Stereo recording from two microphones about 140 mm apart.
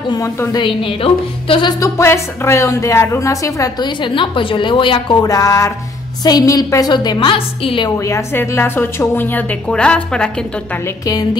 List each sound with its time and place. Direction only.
0.1 s a woman's voice: 25° left (ahead or behind)
1.8 s a woman's voice: 20° left (ahead or behind); by 5.1 s 35° left (ahead or behind)
5.2 s a woman's voice: 25° left (ahead or behind)
8.0 s a woman's voice: 20° left (ahead or behind)